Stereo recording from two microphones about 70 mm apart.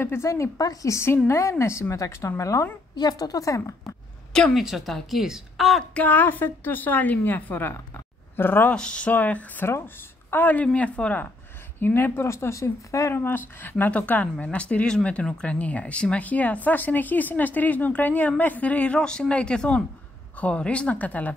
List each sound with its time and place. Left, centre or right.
0.0 s a woman's voice: left
3.0 s a woman's voice: left
4.6 s speech: centre
5.9 s speech: left
8.7 s a woman's voice: centre; by 13.1 s left
13.1 s a woman's voice: left